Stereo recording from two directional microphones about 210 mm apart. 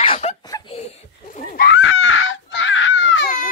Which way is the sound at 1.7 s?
70° left (ahead or behind).